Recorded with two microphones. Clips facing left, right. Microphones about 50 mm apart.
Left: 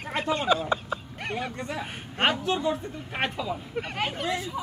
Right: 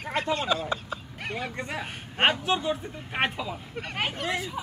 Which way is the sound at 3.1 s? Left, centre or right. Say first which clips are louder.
Right 2 dB; centre.